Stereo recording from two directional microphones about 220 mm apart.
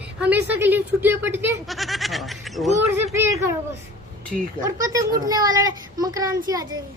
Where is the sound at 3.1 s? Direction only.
10° right (ahead or behind).